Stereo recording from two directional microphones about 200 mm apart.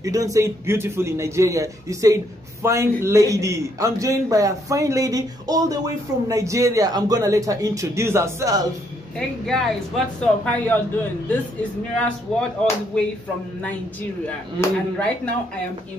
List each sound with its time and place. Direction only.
0.0 s a man's voice: 15° right (ahead or behind)
9.5 s speech: centre (ahead or behind)
12.0 s speech: 5° left (ahead or behind)
14.2 s speech: 5° left (ahead or behind)